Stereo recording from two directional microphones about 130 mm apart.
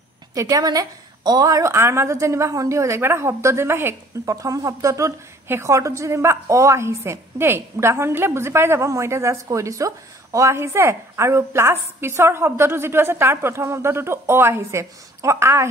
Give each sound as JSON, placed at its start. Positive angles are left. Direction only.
{"t": 0.3, "sound": "a woman's voice", "side_deg": -25}